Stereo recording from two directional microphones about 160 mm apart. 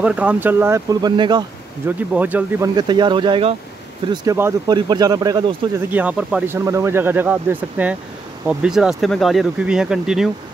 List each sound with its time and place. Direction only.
0.0 s speech: 10° right (ahead or behind); by 1.4 s 30° right (ahead or behind)
1.9 s speech: 10° right (ahead or behind)
2.7 s speech: 30° right (ahead or behind)
5.9 s speech: 10° right (ahead or behind)